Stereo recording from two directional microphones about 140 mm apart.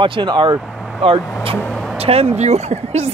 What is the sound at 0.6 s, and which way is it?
Vehicle, 5° right (ahead or behind).